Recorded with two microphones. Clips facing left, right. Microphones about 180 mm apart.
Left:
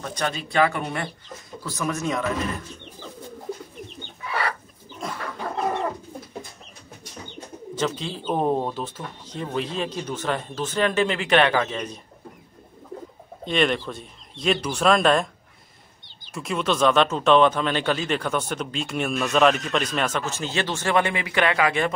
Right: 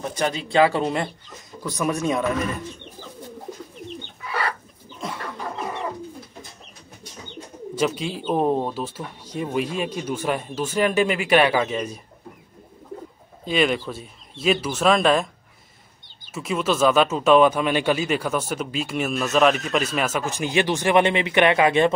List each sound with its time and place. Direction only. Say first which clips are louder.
0.0 s speech: right 3 dB; 20° right (ahead or behind)
7.7 s speech: right 3 dB; 10° right (ahead or behind)
13.5 s speech: right 1 dB; 5° right (ahead or behind)
16.3 s speech: right 1 dB; 5° right (ahead or behind); by 21.9 s 25° right (ahead or behind)